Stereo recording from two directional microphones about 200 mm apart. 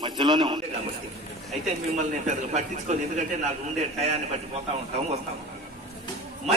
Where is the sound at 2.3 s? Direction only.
35° right (ahead or behind).